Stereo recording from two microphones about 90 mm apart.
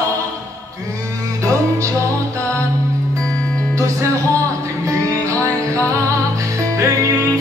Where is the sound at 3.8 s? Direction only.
35° right (ahead or behind).